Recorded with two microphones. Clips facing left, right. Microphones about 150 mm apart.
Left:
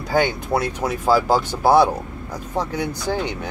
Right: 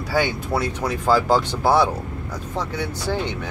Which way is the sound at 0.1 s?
15° left (ahead or behind).